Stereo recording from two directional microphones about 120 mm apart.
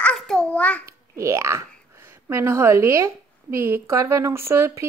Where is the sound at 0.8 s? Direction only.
25° right (ahead or behind).